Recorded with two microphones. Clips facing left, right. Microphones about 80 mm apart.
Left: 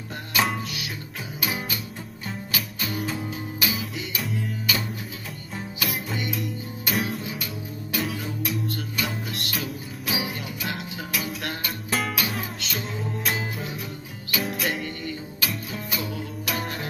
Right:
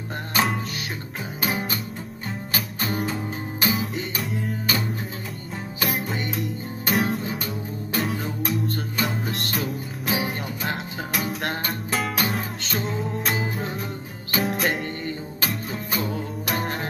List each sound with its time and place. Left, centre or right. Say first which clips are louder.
0.3 s music: right 1 dB; right